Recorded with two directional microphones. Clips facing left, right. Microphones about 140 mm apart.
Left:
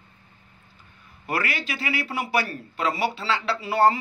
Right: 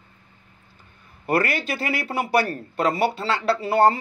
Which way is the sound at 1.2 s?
50° right (ahead or behind).